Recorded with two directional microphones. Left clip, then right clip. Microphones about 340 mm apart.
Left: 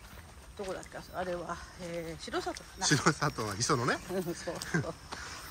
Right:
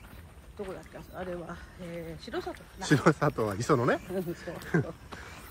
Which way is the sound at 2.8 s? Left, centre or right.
Centre.